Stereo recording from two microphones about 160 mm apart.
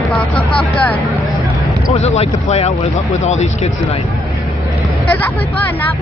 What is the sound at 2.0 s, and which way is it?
Speech, 40° left (ahead or behind).